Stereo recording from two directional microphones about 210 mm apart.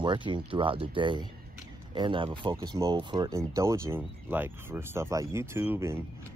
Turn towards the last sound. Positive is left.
turn(degrees=-10)  # may be behind; listen again after turning